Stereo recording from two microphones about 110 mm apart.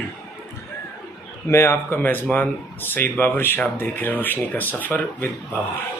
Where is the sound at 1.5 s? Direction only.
25° left (ahead or behind).